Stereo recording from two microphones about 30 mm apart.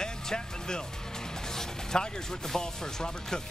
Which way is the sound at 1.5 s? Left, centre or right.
Centre.